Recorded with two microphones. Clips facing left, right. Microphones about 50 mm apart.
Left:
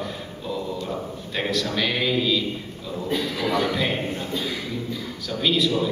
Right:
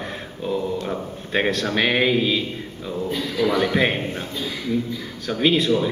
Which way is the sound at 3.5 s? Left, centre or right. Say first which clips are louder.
Right 2 dB; right.